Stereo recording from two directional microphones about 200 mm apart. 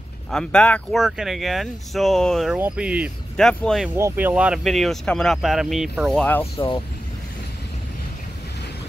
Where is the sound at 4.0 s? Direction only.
10° right (ahead or behind); by 6.5 s 5° left (ahead or behind).